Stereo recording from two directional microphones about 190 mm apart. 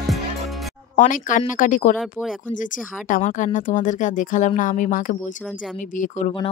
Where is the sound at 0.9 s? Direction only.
45° left (ahead or behind).